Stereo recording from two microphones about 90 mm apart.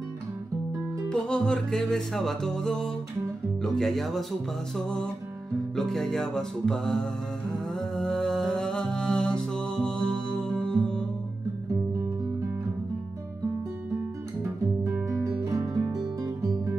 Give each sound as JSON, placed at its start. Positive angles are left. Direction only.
{"t": 1.0, "sound": "music", "side_deg": 10}
{"t": 3.6, "sound": "speech", "side_deg": 5}
{"t": 4.7, "sound": "music", "side_deg": 10}
{"t": 15.4, "sound": "music", "side_deg": -35}